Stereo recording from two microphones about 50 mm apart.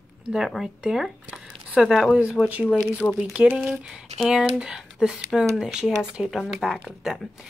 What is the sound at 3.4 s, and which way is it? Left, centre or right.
Speech, right.